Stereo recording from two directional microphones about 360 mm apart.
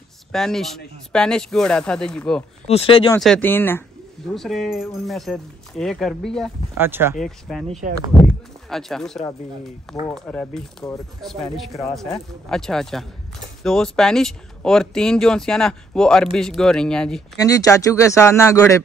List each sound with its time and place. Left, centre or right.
0.3 s speech: centre
2.7 s speech: centre
3.2 s speech: centre
8.3 s a sound: centre
10.0 s speech: centre